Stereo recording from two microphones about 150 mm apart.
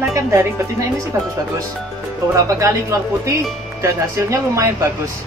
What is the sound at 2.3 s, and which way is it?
Speech, 20° right (ahead or behind).